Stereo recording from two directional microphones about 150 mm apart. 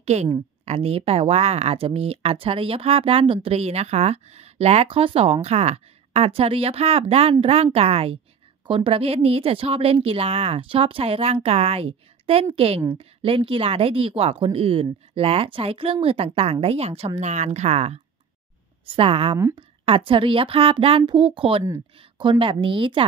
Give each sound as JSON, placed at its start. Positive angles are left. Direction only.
{"t": 0.0, "sound": "a woman's voice", "side_deg": -45}